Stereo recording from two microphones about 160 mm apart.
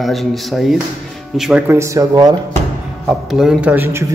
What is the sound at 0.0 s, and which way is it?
A man's voice, centre (ahead or behind).